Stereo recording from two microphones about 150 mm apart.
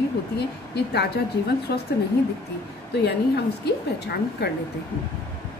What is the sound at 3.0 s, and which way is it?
A woman's voice, 90° left.